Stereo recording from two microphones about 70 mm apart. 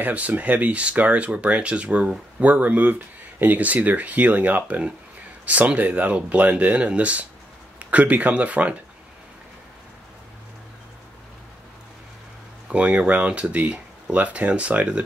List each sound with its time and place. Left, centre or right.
0.0 s speech: right
12.6 s speech: centre